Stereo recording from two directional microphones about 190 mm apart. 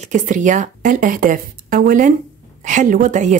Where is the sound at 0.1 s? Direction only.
40° right (ahead or behind).